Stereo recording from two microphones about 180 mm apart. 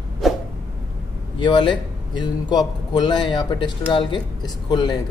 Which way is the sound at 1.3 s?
25° left (ahead or behind).